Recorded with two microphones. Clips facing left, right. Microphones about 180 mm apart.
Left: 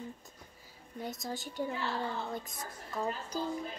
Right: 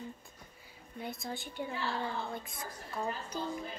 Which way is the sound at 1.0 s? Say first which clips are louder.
Left 1 dB; 40° left (ahead or behind).